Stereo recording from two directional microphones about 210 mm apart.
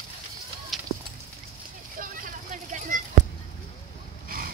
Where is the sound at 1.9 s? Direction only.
40° right (ahead or behind).